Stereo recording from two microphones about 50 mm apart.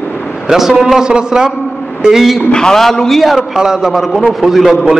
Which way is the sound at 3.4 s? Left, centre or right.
Centre.